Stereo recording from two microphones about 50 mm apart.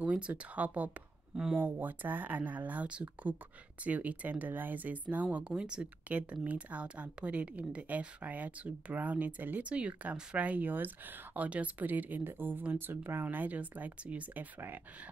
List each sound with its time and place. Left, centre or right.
0.0 s speech: right
5.4 s speech: centre
6.1 s speech: right
12.2 s speech: right
13.2 s speech: right